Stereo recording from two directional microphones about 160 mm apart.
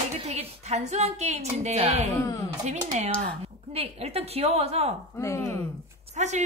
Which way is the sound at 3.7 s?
40° right (ahead or behind).